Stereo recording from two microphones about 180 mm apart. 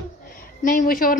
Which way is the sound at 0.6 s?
50° left (ahead or behind).